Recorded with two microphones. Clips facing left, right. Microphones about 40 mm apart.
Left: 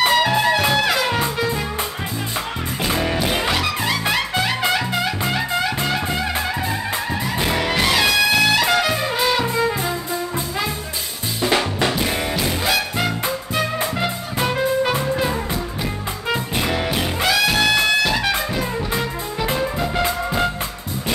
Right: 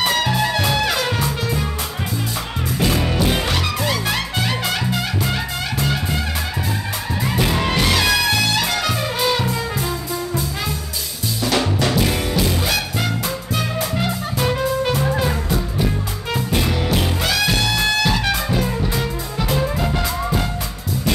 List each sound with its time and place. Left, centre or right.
0.1 s music: centre
2.8 s music: centre
4.6 s music: left
7.3 s music: left
11.4 s music: left
14.4 s music: centre
17.2 s music: centre
18.0 s music: centre